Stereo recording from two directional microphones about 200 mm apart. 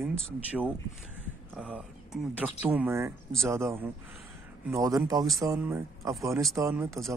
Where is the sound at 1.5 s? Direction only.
5° right (ahead or behind).